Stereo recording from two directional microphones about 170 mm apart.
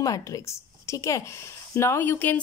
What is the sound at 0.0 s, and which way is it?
A woman's voice, 20° left (ahead or behind).